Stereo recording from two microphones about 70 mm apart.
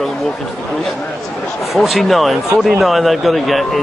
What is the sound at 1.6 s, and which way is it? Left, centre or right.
Speech, centre.